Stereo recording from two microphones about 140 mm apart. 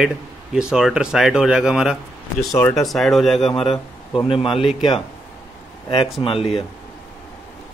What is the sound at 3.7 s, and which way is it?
Speech, 35° left (ahead or behind).